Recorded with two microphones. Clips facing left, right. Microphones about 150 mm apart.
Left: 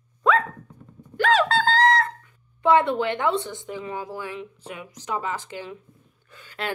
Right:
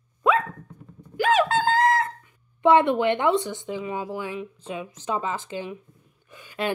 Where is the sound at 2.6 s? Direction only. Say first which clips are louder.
Right 1 dB; 20° right (ahead or behind).